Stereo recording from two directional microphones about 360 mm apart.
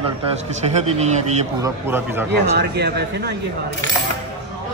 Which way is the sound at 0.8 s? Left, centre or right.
Centre.